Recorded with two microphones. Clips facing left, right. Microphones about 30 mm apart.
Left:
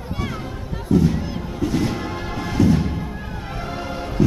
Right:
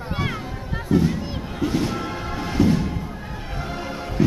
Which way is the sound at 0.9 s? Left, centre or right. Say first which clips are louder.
Left 2 dB; centre.